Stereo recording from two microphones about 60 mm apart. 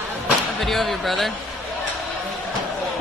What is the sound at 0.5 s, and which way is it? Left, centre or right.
Speech, centre.